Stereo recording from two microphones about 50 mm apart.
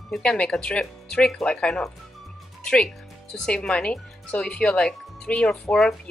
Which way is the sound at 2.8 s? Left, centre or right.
Centre.